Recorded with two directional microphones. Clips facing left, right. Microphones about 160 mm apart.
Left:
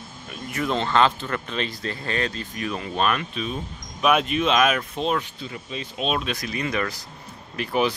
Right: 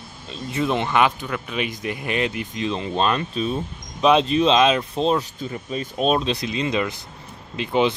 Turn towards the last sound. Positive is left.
turn(degrees=-20)  # may be behind; listen again after turning